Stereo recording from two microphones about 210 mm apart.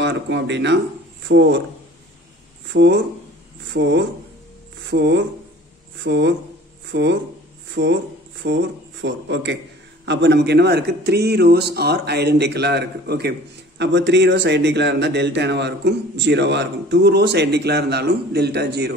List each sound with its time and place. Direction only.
0.0 s speech: 55° right (ahead or behind)
2.7 s speech: 55° right (ahead or behind)